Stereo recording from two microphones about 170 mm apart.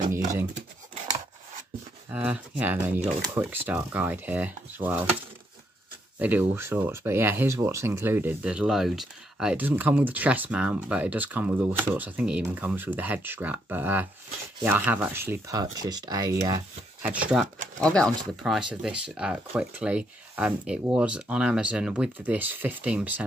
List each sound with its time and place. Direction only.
2.0 s speech: 5° right (ahead or behind)
6.1 s speech: 10° right (ahead or behind)
17.0 s speech: 10° right (ahead or behind)
17.7 s speech: 5° left (ahead or behind)